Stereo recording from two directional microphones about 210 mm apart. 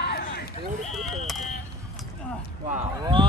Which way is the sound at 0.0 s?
50° left (ahead or behind).